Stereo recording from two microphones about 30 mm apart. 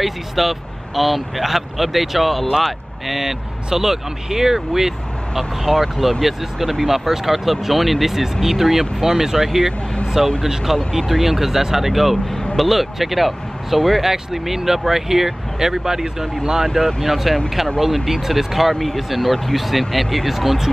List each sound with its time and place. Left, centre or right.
0.0 s speech: centre
5.3 s speech: centre
16.6 s speech: centre